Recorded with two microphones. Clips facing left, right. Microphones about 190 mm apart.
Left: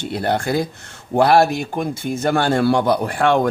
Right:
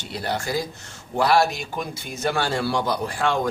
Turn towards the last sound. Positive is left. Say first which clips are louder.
# left 6 dB
turn(degrees=60)  # may be behind; listen again after turning